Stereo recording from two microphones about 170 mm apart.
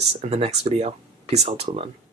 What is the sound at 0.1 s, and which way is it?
Speech, 35° right (ahead or behind).